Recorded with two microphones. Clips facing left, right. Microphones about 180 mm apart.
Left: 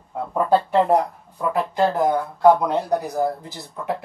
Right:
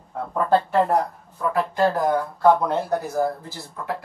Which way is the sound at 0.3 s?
15° left (ahead or behind).